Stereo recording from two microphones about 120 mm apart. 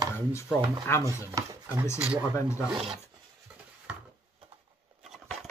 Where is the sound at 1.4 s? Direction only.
30° right (ahead or behind).